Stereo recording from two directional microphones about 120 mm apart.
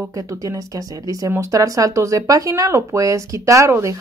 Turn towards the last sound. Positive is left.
turn(degrees=-25)  # may be behind; listen again after turning